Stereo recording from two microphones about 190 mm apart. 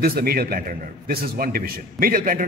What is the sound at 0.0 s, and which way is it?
A man's voice, 50° right (ahead or behind).